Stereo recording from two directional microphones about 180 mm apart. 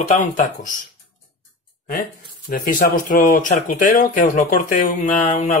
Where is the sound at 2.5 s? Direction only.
50° left (ahead or behind).